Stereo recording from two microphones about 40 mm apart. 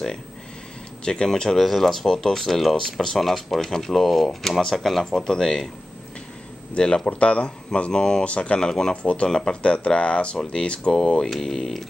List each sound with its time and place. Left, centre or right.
1.0 s speech: left
1.6 s speech: centre
6.7 s speech: left
8.3 s speech: left
8.5 s speech: centre
8.9 s speech: left
9.3 s speech: centre
11.2 s speech: centre